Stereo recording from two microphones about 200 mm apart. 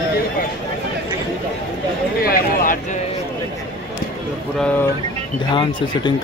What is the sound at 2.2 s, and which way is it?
Speech, 45° left (ahead or behind).